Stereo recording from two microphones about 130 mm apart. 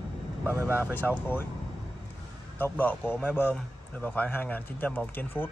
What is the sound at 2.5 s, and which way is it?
A man's voice, 15° left (ahead or behind).